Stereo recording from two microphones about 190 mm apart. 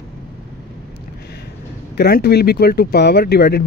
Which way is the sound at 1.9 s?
60° left (ahead or behind).